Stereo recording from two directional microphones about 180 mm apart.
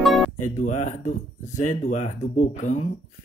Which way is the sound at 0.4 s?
40° left (ahead or behind).